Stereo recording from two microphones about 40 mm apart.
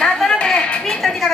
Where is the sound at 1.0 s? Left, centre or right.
Centre.